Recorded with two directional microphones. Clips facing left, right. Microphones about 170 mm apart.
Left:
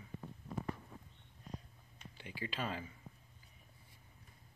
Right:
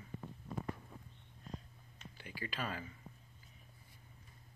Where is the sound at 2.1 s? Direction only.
20° left (ahead or behind).